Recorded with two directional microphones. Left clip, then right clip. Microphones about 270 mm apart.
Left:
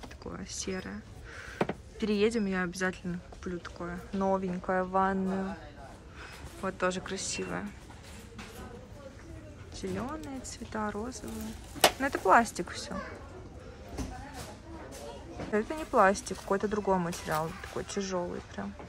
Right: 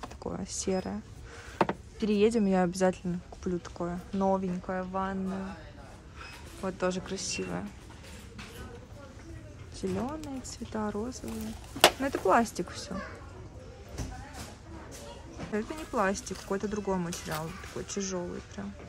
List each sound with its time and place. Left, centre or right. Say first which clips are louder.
0.2 s speech: right 3 dB; centre
1.6 s speech: right 4 dB; centre
6.6 s speech: even; centre
9.8 s speech: right 2 dB; centre
15.5 s speech: left 5 dB; centre